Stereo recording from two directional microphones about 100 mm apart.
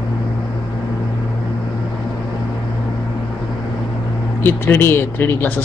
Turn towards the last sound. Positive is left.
turn(degrees=20)  # may be behind; listen again after turning